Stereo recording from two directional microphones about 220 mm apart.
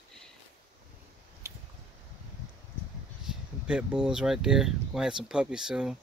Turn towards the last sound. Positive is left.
turn(degrees=-5)  # may be behind; listen again after turning